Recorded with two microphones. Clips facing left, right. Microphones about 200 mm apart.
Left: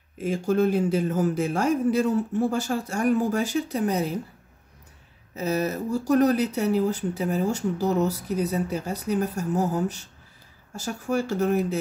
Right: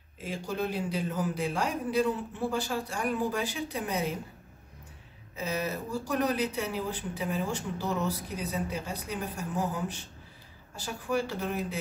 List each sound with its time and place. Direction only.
0.2 s a man's voice: 45° left (ahead or behind)
5.3 s a man's voice: 40° left (ahead or behind)